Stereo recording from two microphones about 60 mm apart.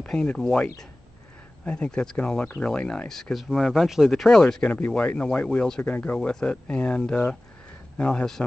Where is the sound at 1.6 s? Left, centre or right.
Centre.